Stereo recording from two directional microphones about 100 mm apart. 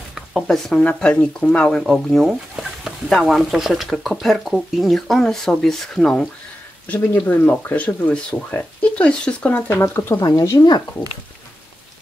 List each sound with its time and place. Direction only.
0.1 s speech: centre (ahead or behind)
6.9 s speech: 15° left (ahead or behind)
10.2 s speech: 35° left (ahead or behind)